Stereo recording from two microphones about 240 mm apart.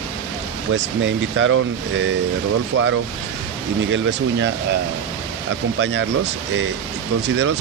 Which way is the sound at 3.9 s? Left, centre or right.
Right.